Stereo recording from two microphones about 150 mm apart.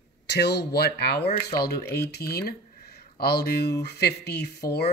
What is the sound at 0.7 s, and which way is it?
Speech, 90° left.